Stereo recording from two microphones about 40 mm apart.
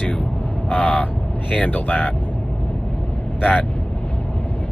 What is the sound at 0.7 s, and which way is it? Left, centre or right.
Vehicle, left.